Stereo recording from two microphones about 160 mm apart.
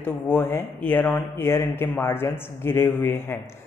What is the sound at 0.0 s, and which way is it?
Speech, 15° left (ahead or behind).